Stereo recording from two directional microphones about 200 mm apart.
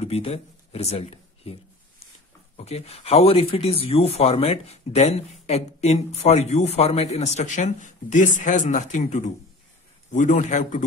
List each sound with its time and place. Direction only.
0.0 s speech: 30° left (ahead or behind)